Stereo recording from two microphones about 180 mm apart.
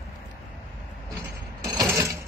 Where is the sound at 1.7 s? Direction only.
20° right (ahead or behind).